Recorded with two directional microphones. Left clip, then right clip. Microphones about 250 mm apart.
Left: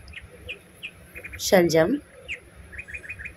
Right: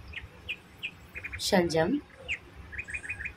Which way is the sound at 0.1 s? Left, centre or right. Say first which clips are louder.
Even; centre.